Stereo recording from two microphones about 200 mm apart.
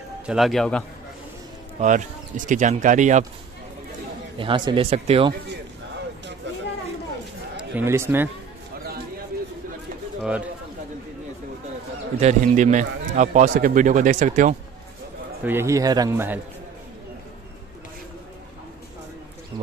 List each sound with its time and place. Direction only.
0.3 s a man's voice: centre (ahead or behind)
1.8 s speech: 40° right (ahead or behind)
4.4 s speech: 25° right (ahead or behind)
7.5 s speech: 10° right (ahead or behind)
10.2 s speech: 5° right (ahead or behind)
12.2 s speech: 35° right (ahead or behind)
15.4 s a man's voice: 10° right (ahead or behind)